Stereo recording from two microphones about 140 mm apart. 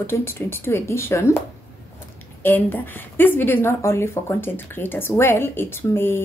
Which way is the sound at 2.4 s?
15° left (ahead or behind).